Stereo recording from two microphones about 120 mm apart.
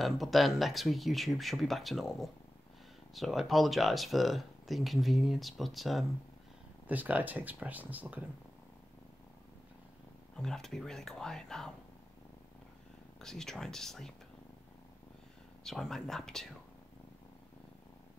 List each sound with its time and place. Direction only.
0.0 s speech: centre (ahead or behind)
6.9 s speech: 15° right (ahead or behind)
10.3 s speech: 5° left (ahead or behind)
13.2 s speech: 5° left (ahead or behind)
15.6 s speech: 5° left (ahead or behind)